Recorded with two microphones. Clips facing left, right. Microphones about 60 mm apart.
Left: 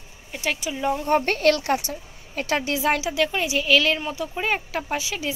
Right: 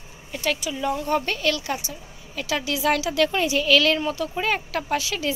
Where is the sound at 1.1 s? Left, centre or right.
Left.